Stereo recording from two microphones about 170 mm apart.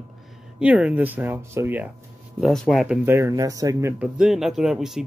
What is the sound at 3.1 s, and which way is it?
Speech, 15° right (ahead or behind).